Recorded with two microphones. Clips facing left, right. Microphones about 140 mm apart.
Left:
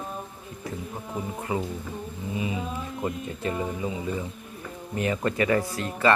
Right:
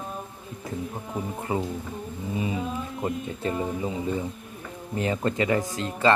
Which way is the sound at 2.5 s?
Centre (ahead or behind).